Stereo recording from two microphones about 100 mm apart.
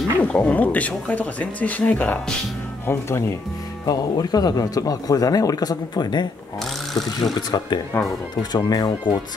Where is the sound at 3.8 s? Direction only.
40° left (ahead or behind).